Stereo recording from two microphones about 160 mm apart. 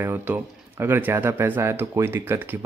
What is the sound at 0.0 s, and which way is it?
Speech, 10° right (ahead or behind).